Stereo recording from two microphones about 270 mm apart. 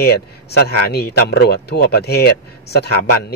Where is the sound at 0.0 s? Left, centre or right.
Left.